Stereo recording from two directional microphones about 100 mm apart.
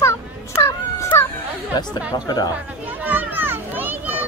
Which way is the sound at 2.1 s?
40° left (ahead or behind).